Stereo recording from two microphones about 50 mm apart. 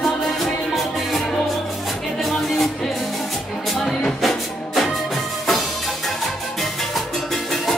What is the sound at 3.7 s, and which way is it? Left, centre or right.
Music, centre.